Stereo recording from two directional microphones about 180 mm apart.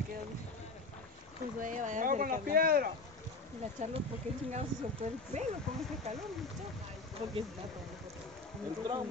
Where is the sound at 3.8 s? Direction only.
45° right (ahead or behind).